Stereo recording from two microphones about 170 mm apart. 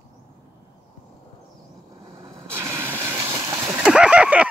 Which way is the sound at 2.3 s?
15° right (ahead or behind).